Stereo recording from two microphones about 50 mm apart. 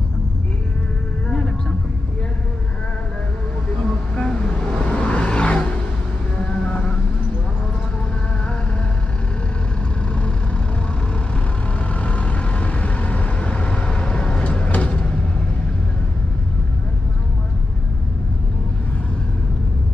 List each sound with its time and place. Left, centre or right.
4.1 s vehicle: centre
11.9 s vehicle: left